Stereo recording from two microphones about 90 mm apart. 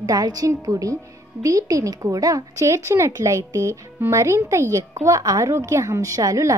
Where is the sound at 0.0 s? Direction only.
45° right (ahead or behind).